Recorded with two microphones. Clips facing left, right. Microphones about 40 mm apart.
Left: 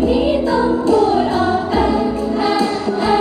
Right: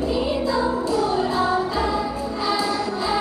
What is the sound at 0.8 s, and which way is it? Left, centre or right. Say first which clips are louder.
Music: left 8 dB; left.